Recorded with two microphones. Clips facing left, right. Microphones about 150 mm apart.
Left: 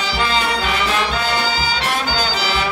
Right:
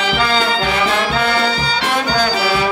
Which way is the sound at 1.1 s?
75° right (ahead or behind).